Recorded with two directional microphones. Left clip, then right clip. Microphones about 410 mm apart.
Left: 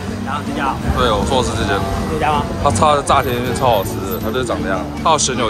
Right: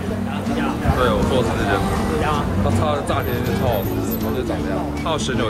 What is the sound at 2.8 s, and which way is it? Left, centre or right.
Speech, centre.